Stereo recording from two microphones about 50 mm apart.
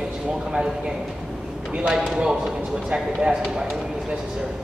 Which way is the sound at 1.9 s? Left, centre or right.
Centre.